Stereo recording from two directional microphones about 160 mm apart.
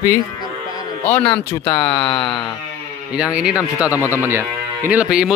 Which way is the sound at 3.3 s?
10° right (ahead or behind).